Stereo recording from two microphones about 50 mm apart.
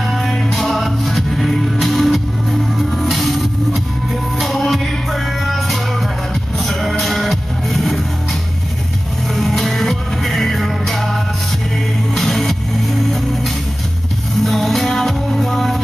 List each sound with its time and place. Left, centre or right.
0.0 s music: centre
9.3 s music: centre